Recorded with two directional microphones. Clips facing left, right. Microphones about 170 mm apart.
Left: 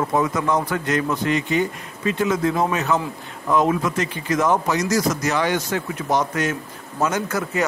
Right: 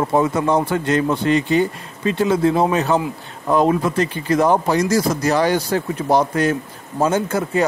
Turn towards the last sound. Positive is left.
turn(degrees=-30)  # may be behind; listen again after turning